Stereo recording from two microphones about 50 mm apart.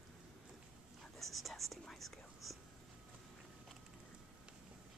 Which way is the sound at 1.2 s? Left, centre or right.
Centre.